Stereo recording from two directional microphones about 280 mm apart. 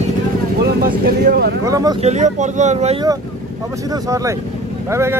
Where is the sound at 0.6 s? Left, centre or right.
Right.